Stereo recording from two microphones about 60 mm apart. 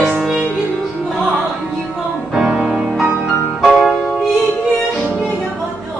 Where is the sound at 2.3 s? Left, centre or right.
Centre.